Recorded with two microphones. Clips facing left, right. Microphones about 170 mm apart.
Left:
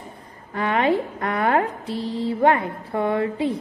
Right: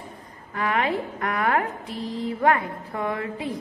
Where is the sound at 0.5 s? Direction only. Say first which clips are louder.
Left 4 dB; 30° left (ahead or behind).